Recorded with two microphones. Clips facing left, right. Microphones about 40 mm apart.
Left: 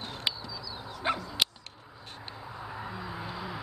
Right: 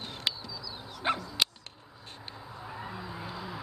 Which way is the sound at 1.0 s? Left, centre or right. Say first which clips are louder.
Even; centre.